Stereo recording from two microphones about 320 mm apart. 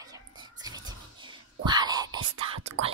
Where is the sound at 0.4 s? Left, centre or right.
Centre.